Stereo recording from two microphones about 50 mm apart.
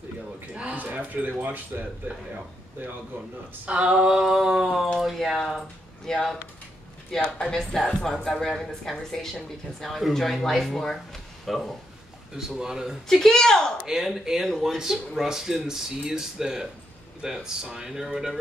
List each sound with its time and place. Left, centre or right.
0.5 s speech: right
3.6 s speech: right; by 11.7 s centre
12.4 s speech: centre
13.1 s speech: centre
13.8 s speech: centre